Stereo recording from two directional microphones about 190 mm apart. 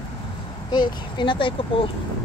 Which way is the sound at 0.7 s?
25° left (ahead or behind).